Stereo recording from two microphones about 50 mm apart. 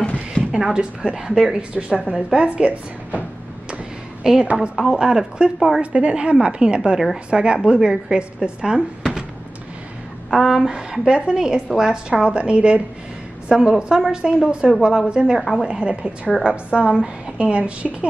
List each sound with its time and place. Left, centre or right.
0.5 s a woman's voice: centre
1.6 s a woman's voice: right
4.2 s a woman's voice: centre
5.8 s a woman's voice: right
10.3 s speech: centre
10.7 s a woman's voice: centre